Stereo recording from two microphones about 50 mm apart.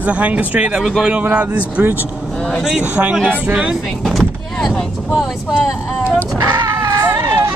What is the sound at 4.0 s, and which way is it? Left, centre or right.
Vehicle, centre.